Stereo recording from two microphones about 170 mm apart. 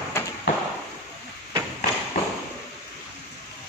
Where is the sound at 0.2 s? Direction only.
15° left (ahead or behind).